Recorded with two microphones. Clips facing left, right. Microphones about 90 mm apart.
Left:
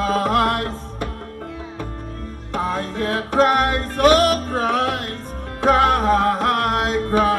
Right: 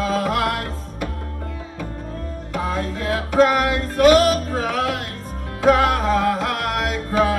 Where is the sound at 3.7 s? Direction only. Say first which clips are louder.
Right 1 dB; 40° left (ahead or behind).